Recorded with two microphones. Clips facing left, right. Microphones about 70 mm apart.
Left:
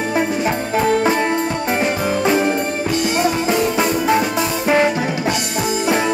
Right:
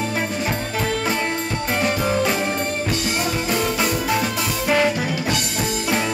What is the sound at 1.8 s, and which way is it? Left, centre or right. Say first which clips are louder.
Music: right 1 dB; left.